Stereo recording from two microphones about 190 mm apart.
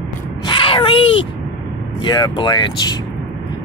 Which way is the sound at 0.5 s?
25° left (ahead or behind).